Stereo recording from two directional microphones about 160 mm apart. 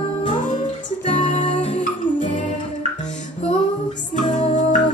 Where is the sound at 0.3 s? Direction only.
50° left (ahead or behind).